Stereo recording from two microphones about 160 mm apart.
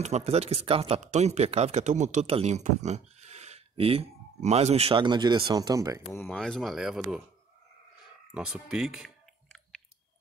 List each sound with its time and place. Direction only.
0.0 s a man's voice: 45° right (ahead or behind); by 6.0 s 20° right (ahead or behind)
6.2 s speech: 5° left (ahead or behind)
8.4 s speech: 5° right (ahead or behind)